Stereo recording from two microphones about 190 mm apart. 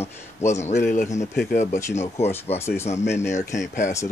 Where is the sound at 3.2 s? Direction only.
40° left (ahead or behind).